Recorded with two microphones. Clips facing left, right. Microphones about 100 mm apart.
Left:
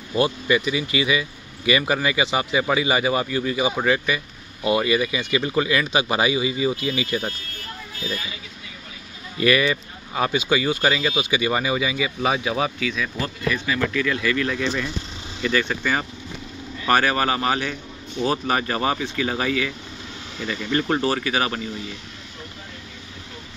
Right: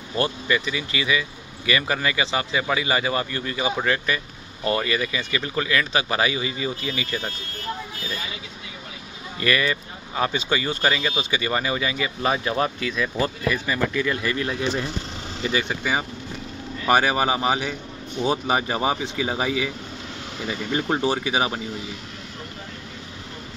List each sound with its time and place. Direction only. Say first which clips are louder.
0.1 s speech: left 3 dB; 15° left (ahead or behind)
9.4 s speech: left 4 dB; 15° left (ahead or behind)
13.2 s speech: right 2 dB; 10° right (ahead or behind)
20.8 s speech: right 1 dB; 20° right (ahead or behind)